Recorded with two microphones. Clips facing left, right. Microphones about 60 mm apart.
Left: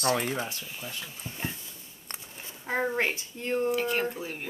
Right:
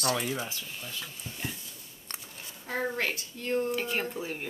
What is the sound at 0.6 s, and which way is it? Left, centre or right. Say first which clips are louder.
Speech: left 2 dB; centre.